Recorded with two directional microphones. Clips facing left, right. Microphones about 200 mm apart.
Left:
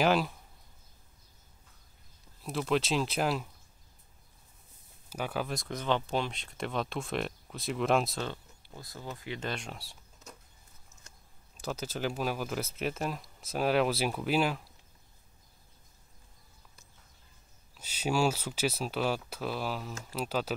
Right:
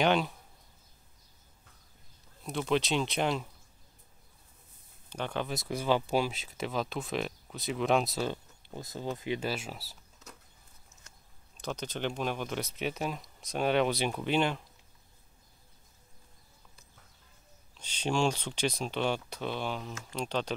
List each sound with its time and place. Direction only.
0.0 s speech: 5° left (ahead or behind)
2.4 s speech: centre (ahead or behind)
5.1 s speech: 5° left (ahead or behind)
8.3 s speech: 20° right (ahead or behind)
9.4 s speech: 5° right (ahead or behind)
11.6 s speech: 5° left (ahead or behind)
17.7 s speech: 5° left (ahead or behind)